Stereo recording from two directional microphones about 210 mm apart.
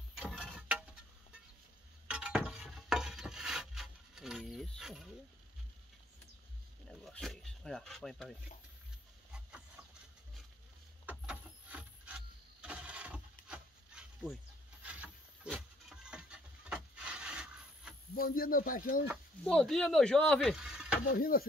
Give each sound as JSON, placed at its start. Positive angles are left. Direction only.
{"t": 0.2, "sound": "tick-tock", "side_deg": 0}
{"t": 2.0, "sound": "a sound", "side_deg": -5}
{"t": 7.0, "sound": "speech", "side_deg": 0}
{"t": 11.1, "sound": "a sound", "side_deg": -5}
{"t": 18.1, "sound": "speech", "side_deg": 45}
{"t": 19.4, "sound": "speech", "side_deg": 5}
{"t": 21.1, "sound": "speech", "side_deg": 45}